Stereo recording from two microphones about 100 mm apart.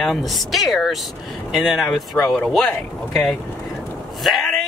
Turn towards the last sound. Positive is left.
turn(degrees=0)  # may be behind; listen again after turning